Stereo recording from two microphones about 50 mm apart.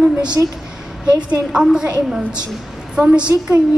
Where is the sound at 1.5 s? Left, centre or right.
Centre.